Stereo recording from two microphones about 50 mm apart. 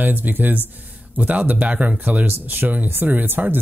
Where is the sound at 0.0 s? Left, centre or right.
Right.